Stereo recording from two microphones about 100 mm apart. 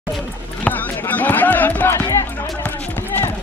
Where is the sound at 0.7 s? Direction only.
15° left (ahead or behind).